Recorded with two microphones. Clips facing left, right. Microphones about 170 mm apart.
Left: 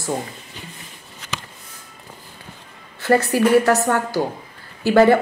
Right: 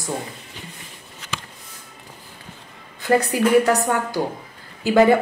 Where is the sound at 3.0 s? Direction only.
15° right (ahead or behind).